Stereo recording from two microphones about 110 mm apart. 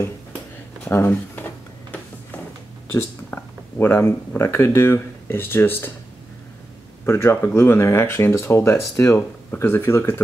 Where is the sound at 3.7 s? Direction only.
20° left (ahead or behind).